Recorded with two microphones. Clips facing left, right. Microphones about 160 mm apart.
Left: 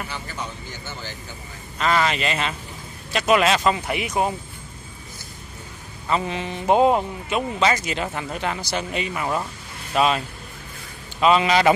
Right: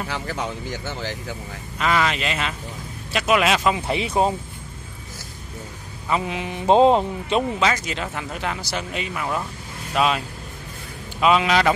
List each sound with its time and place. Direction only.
0.1 s speech: 90° right
1.8 s speech: centre (ahead or behind)
3.8 s speech: 25° right (ahead or behind)
6.0 s speech: 5° right (ahead or behind)
6.7 s speech: 25° right (ahead or behind)
7.6 s speech: 5° left (ahead or behind)